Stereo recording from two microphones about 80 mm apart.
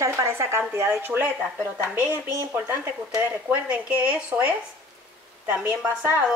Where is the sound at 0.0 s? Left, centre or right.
Right.